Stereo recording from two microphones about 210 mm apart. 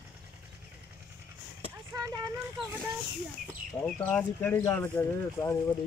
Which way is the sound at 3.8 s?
5° left (ahead or behind).